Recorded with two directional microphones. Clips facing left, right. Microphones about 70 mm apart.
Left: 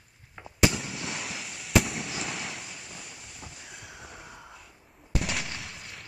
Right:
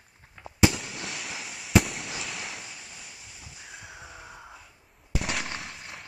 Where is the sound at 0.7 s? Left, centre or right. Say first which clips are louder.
Left 1 dB; centre.